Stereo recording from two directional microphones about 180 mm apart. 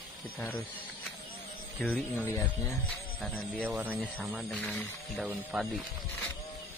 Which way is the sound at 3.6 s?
10° right (ahead or behind).